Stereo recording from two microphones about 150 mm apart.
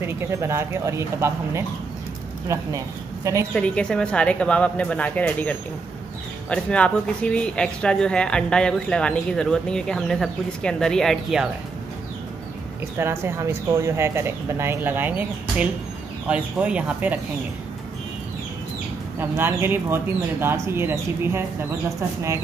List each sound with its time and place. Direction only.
0.0 s speech: 15° right (ahead or behind)
3.5 s speech: 5° left (ahead or behind)
12.9 s speech: 15° right (ahead or behind)
19.1 s speech: 15° right (ahead or behind)